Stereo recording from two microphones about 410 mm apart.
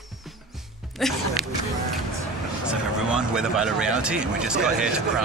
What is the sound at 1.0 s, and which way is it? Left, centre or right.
Speech, centre.